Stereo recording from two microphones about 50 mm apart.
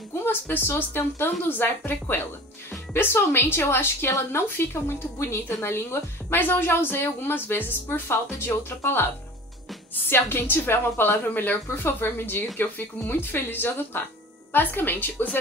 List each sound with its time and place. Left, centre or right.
0.2 s speech: left
11.2 s speech: left
11.7 s speech: left